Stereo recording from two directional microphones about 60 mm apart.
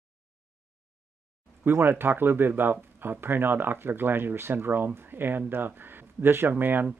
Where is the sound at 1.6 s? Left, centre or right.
Right.